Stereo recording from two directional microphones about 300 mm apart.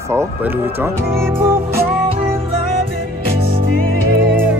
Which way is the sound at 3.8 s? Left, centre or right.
Right.